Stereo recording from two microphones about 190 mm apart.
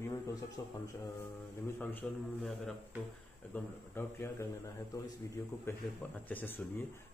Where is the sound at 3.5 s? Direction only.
10° left (ahead or behind).